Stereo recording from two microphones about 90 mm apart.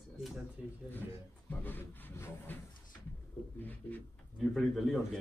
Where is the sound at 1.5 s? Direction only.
20° left (ahead or behind).